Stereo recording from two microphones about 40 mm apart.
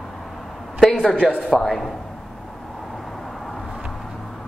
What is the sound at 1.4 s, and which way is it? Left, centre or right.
Speech, centre.